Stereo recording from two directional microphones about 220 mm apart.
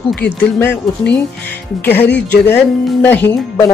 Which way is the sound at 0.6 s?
10° left (ahead or behind).